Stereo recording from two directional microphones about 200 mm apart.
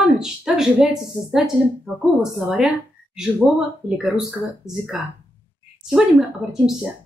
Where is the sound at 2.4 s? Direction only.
5° right (ahead or behind).